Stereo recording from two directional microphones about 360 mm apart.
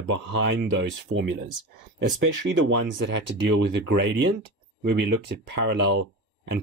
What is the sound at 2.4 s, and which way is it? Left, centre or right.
Speech, right.